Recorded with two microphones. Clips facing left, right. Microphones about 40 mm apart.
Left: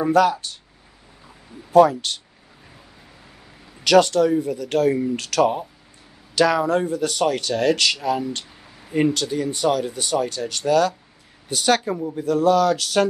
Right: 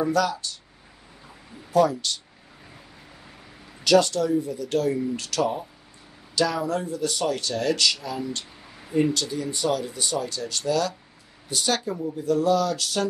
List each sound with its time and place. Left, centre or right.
0.0 s speech: left
1.7 s speech: left
3.8 s speech: left